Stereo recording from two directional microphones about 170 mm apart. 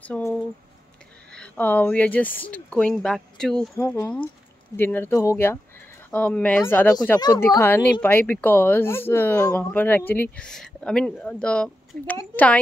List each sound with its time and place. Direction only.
0.0 s a woman's voice: 10° left (ahead or behind)
3.7 s a woman's voice: 15° left (ahead or behind)
7.2 s a woman's voice: 20° left (ahead or behind)